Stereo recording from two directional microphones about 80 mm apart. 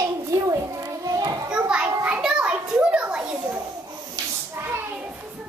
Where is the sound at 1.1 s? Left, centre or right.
Right.